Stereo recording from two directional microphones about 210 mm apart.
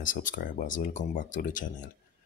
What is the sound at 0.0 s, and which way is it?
Speech, 40° left (ahead or behind).